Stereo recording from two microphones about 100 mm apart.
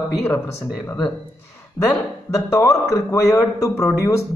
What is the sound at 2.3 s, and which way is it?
Speech, 35° left (ahead or behind).